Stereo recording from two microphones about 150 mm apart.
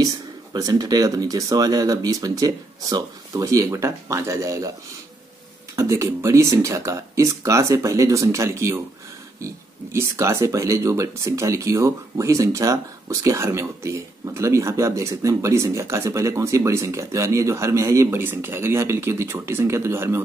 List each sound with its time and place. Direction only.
0.0 s speech: 25° right (ahead or behind)
5.8 s speech: 20° right (ahead or behind)
9.9 s speech: 20° right (ahead or behind)